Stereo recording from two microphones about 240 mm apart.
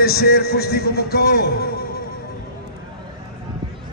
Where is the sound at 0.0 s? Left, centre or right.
Left.